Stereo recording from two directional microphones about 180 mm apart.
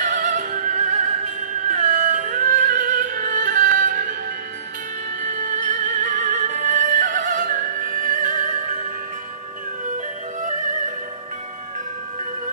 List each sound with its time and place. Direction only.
0.0 s music: 45° right (ahead or behind)
5.6 s music: 45° right (ahead or behind)